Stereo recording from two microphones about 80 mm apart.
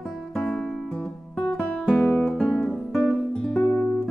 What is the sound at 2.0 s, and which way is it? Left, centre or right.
Guitar, centre.